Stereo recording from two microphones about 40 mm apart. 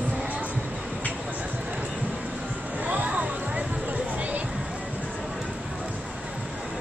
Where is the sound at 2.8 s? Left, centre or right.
Right.